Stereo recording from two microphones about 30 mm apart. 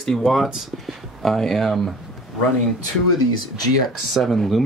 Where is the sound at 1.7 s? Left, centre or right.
Centre.